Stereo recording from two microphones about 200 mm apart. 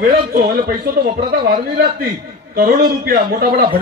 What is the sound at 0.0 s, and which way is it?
A man's voice, 50° right (ahead or behind).